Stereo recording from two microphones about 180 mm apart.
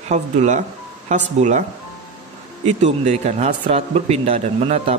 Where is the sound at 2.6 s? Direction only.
40° right (ahead or behind).